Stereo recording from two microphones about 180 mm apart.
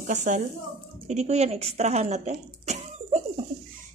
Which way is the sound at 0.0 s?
45° right (ahead or behind).